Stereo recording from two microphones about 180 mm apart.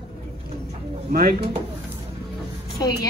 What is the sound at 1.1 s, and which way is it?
Speech, 55° right (ahead or behind).